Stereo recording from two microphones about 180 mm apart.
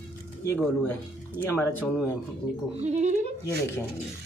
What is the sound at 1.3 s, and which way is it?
Speech, 10° left (ahead or behind).